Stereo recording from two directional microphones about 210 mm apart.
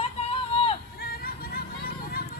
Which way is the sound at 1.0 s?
45° left (ahead or behind).